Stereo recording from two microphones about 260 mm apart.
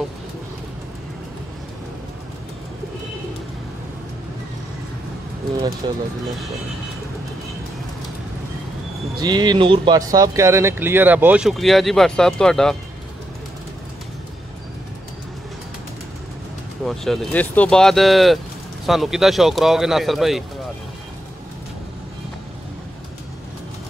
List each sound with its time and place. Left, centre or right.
5.8 s speech: centre
9.2 s speech: centre
16.8 s speech: centre